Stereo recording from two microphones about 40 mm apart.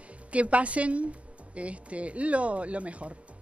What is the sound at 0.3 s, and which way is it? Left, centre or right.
Speech, right.